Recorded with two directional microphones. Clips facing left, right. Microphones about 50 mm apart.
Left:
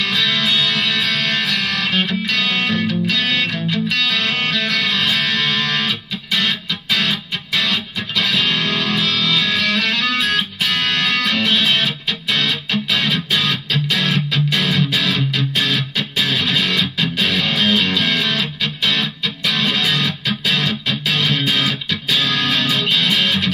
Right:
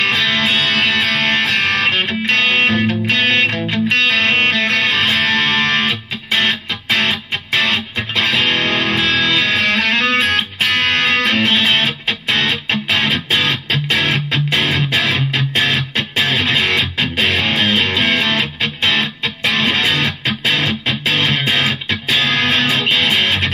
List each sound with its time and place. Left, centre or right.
0.0 s music: right
12.7 s music: right